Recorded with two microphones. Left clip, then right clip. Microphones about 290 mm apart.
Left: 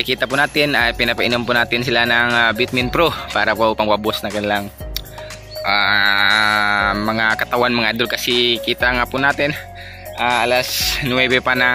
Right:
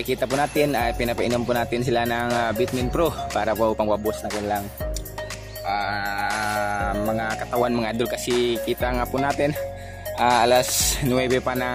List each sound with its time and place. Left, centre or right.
0.0 s speech: centre
4.0 s speech: centre
5.7 s music: centre
7.6 s speech: centre